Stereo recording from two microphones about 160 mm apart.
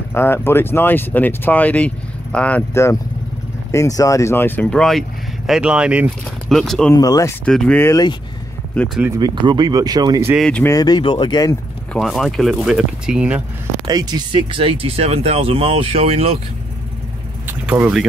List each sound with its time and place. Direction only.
0.1 s speech: 15° left (ahead or behind)
6.9 s speech: 20° left (ahead or behind)
7.4 s speech: 5° left (ahead or behind)
8.7 s speech: centre (ahead or behind)
9.0 s speech: 15° right (ahead or behind)
9.3 s speech: 30° right (ahead or behind)
10.3 s speech: 5° left (ahead or behind)
10.6 s speech: 20° left (ahead or behind)
11.9 s speech: centre (ahead or behind)
13.8 s speech: 25° right (ahead or behind)
17.5 s vehicle: 10° right (ahead or behind)